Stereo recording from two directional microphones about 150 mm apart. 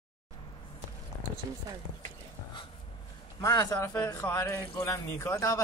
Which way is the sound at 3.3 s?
25° left (ahead or behind).